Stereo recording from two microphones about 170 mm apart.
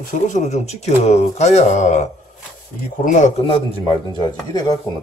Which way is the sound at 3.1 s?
45° left (ahead or behind).